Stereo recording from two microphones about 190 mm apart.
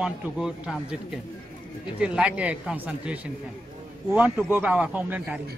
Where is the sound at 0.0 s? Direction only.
Centre (ahead or behind).